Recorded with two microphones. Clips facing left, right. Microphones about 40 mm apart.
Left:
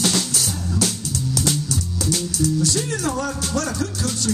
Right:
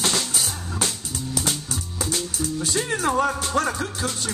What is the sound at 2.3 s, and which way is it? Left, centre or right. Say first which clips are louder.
Speech: left 6 dB; right.